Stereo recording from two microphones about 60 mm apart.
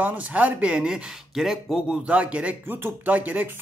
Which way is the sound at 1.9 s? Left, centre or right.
Centre.